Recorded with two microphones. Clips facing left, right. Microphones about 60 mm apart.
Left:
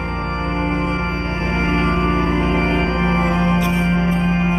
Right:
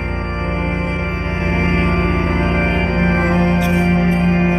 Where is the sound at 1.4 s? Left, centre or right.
Right.